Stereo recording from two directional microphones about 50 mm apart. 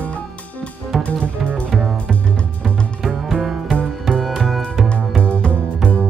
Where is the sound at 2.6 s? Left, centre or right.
Centre.